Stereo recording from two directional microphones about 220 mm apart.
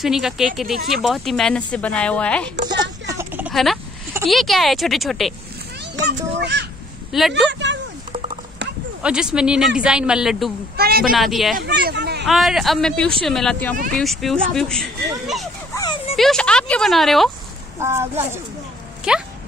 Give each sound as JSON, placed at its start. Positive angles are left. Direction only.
{"t": 0.0, "sound": "speech", "side_deg": 0}
{"t": 2.8, "sound": "a sound", "side_deg": -15}
{"t": 4.3, "sound": "speech", "side_deg": 0}
{"t": 5.9, "sound": "speech", "side_deg": -50}
{"t": 7.1, "sound": "speech", "side_deg": 0}
{"t": 7.4, "sound": "speech", "side_deg": -55}
{"t": 9.0, "sound": "speech", "side_deg": -5}
{"t": 10.8, "sound": "speech", "side_deg": -45}
{"t": 11.1, "sound": "speech", "side_deg": 0}
{"t": 11.5, "sound": "speech", "side_deg": -45}
{"t": 12.3, "sound": "speech", "side_deg": 0}
{"t": 15.7, "sound": "a sound", "side_deg": 15}
{"t": 16.2, "sound": "speech", "side_deg": 5}
{"t": 17.7, "sound": "speech", "side_deg": -10}